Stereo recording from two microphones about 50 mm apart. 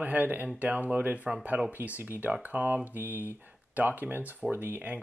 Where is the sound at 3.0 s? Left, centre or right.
Right.